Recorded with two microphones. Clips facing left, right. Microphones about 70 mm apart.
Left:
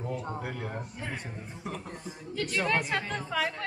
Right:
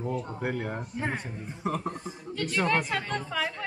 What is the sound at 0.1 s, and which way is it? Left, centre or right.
Speech, left.